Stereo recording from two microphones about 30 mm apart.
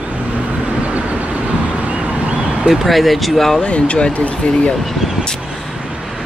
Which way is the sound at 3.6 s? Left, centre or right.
Left.